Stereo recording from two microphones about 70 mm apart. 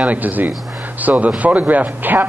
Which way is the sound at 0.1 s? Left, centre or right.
Right.